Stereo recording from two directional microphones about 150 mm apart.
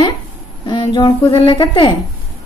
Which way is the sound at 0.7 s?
30° left (ahead or behind).